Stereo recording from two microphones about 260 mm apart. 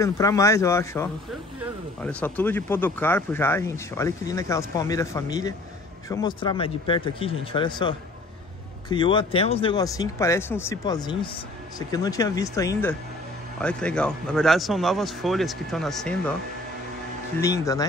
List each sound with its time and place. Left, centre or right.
0.0 s speech: centre
17.4 s speech: centre